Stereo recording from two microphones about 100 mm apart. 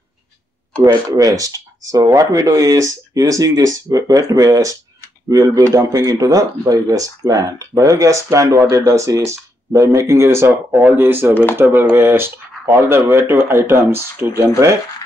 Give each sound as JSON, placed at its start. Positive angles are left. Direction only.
{"t": 1.1, "sound": "speech", "side_deg": -35}